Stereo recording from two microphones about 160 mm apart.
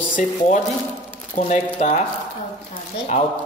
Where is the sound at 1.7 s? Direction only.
45° left (ahead or behind).